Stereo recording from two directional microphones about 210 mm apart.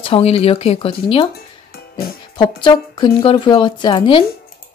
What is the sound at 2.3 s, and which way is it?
Speech, 20° left (ahead or behind).